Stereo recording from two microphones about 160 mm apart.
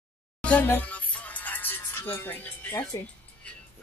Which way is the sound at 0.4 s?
10° left (ahead or behind).